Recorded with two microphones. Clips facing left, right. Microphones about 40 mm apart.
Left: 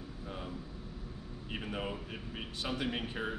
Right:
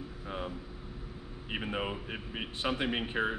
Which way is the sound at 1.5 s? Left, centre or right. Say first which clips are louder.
Right 4 dB; right.